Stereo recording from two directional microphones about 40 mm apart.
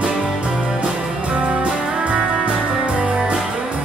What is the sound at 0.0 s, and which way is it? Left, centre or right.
Music, right.